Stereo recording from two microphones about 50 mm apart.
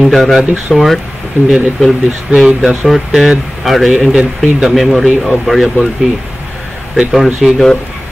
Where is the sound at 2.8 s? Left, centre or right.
Centre.